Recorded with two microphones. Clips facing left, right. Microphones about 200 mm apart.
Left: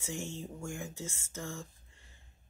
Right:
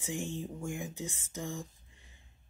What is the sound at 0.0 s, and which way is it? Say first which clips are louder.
Speech: right 3 dB; 15° right (ahead or behind).